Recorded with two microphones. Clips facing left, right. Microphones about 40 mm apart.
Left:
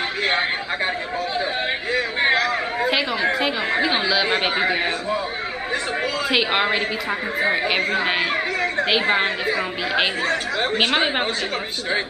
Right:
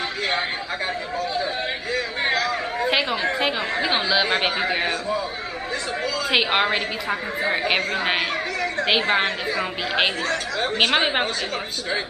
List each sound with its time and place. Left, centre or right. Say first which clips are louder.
0.2 s a sound: left 4 dB; left
1.3 s chatter: left 4 dB; left
2.9 s chatter: right 1 dB; centre
3.8 s a woman's voice: right 1 dB; centre
6.3 s a woman's voice: even; centre
10.2 s speech: left 2 dB; left
10.8 s a woman's voice: right 2 dB; centre